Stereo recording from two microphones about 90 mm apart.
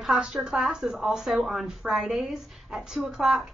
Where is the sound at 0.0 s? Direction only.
5° right (ahead or behind).